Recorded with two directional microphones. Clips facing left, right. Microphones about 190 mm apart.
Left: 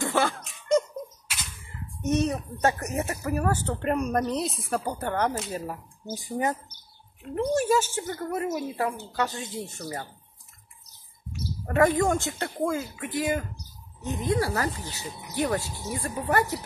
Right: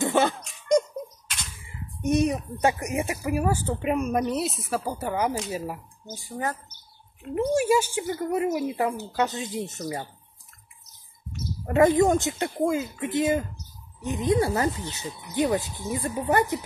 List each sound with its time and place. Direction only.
0.0 s a sound: 20° right (ahead or behind)
1.2 s a sound: 5° left (ahead or behind)
1.6 s speech: 10° right (ahead or behind)
6.0 s speech: 15° left (ahead or behind)
7.2 s speech: 10° right (ahead or behind)
11.6 s speech: 20° right (ahead or behind)